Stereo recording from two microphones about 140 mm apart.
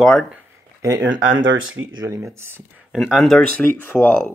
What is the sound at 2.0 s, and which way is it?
Speech, 20° right (ahead or behind).